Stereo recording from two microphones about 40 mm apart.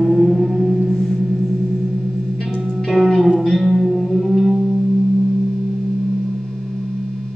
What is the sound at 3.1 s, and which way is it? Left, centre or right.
Music, centre.